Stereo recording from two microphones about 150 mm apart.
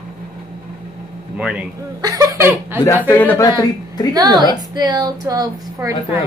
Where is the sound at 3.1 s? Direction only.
15° left (ahead or behind).